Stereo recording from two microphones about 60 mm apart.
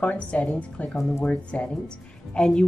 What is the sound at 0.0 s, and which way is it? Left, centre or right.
A woman's voice, left.